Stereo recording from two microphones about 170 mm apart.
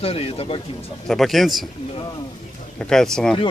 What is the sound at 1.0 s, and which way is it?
Speech, centre (ahead or behind).